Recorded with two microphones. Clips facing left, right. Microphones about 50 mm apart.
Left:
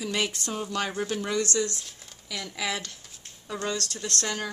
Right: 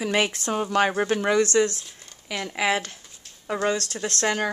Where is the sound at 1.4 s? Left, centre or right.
Right.